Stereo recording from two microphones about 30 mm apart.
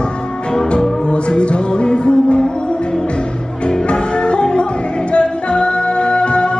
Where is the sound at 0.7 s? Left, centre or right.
Left.